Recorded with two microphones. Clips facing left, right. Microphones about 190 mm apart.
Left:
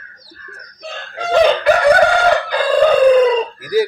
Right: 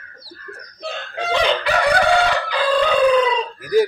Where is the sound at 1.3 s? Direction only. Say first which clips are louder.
Left 7 dB; 45° left (ahead or behind).